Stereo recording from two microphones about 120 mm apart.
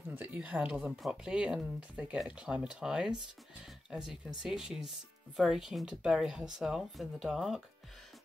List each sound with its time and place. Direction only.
0.1 s speech: 15° right (ahead or behind)